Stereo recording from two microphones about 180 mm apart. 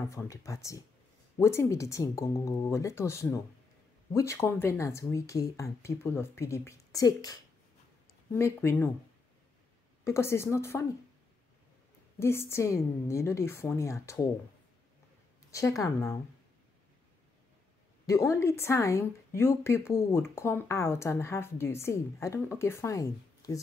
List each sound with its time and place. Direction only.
0.1 s speech: 15° left (ahead or behind)
10.0 s speech: 15° left (ahead or behind)
12.2 s speech: 15° left (ahead or behind)
15.5 s speech: 20° left (ahead or behind)
18.0 s speech: 15° left (ahead or behind)